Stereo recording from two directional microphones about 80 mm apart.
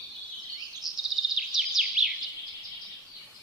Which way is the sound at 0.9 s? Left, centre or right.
Centre.